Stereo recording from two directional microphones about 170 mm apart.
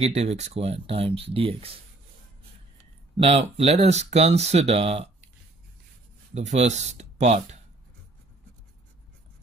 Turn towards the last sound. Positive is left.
turn(degrees=-40)  # may be behind; listen again after turning